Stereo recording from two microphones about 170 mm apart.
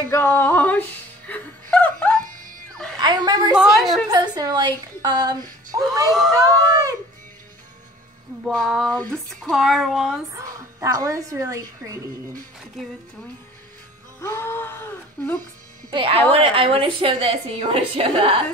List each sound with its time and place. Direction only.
0.1 s music: 10° left (ahead or behind)
3.0 s a woman's voice: 25° right (ahead or behind)
3.5 s a woman's voice: centre (ahead or behind)
4.1 s speech: 25° right (ahead or behind)
8.5 s a woman's voice: centre (ahead or behind)
10.3 s a woman's voice: 20° right (ahead or behind)
12.8 s a woman's voice: centre (ahead or behind)
14.2 s speech: 15° left (ahead or behind)
15.9 s a woman's voice: 30° right (ahead or behind)